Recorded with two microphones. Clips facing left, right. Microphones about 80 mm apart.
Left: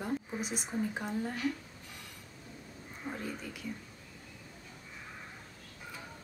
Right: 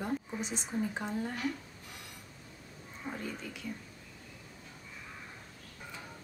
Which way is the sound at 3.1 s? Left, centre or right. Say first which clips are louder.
Even; centre.